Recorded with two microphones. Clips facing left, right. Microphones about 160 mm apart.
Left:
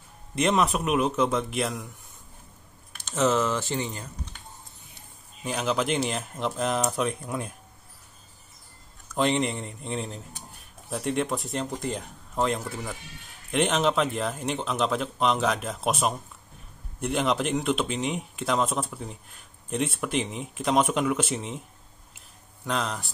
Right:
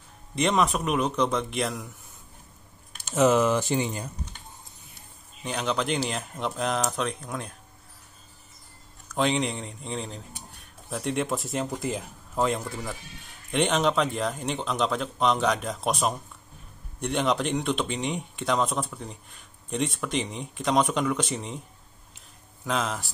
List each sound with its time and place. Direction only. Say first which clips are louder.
0.4 s speech: even; centre (ahead or behind)
3.0 s speech: right 3 dB; 10° right (ahead or behind)
5.4 s speech: left 1 dB; 5° left (ahead or behind)
9.1 s a man's voice: left 1 dB; centre (ahead or behind)
22.7 s speech: right 1 dB; centre (ahead or behind)